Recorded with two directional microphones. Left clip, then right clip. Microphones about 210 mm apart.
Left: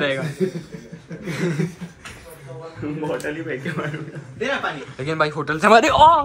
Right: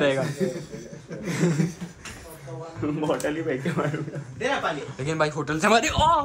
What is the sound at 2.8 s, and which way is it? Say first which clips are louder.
Speech: right 1 dB; 5° right (ahead or behind).